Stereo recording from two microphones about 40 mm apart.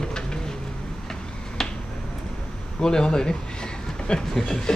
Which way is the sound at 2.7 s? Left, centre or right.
Centre.